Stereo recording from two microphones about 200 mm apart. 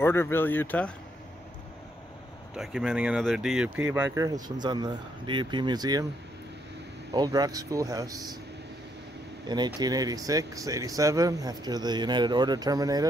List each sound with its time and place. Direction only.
0.0 s speech: 10° left (ahead or behind)
2.5 s speech: centre (ahead or behind); by 6.0 s 20° right (ahead or behind)
7.2 s speech: 20° right (ahead or behind)
9.8 s speech: 20° right (ahead or behind)